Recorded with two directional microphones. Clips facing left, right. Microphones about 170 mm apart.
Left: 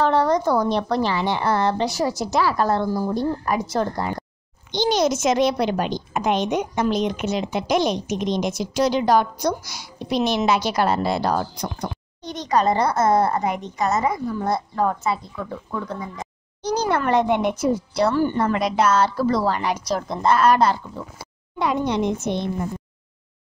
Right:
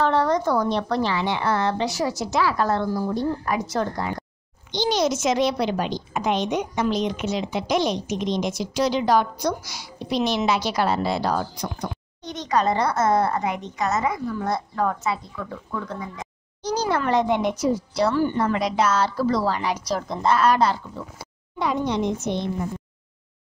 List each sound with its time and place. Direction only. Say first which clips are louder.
0.0 s a sound: left 2 dB; 35° left (ahead or behind)
0.7 s a woman's voice: left 2 dB; 35° left (ahead or behind)
4.6 s a child's voice: left 2 dB; 50° left (ahead or behind); by 16.3 s 30° left (ahead or behind)
16.6 s a child's voice: left 2 dB; 60° left (ahead or behind)
21.5 s a child's voice: left 2 dB; 60° left (ahead or behind)